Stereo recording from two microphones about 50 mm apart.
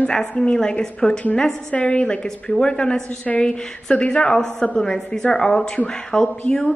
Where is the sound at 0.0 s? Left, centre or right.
Left.